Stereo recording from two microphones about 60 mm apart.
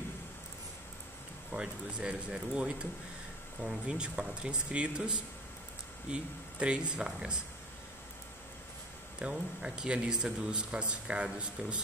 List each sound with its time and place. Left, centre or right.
1.5 s speech: centre
9.2 s speech: centre